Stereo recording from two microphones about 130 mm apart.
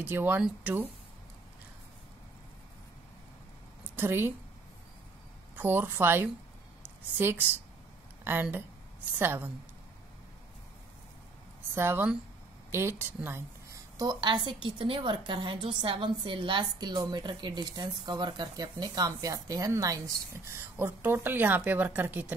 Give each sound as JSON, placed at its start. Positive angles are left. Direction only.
{"t": 0.0, "sound": "a woman's voice", "side_deg": -15}
{"t": 3.9, "sound": "a woman's voice", "side_deg": -15}
{"t": 5.6, "sound": "a woman's voice", "side_deg": -15}
{"t": 11.7, "sound": "a woman's voice", "side_deg": -20}